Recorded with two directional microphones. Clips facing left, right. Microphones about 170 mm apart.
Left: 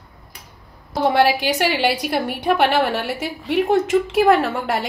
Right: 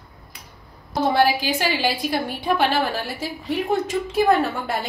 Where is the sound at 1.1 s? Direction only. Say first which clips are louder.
Left 3 dB; 75° left (ahead or behind).